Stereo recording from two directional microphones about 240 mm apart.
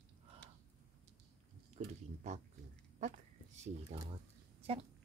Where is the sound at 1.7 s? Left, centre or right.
Right.